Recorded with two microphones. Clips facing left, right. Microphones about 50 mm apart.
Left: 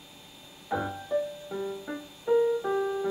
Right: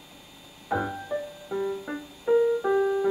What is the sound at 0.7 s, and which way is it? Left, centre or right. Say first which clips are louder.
Music: right 2 dB; centre.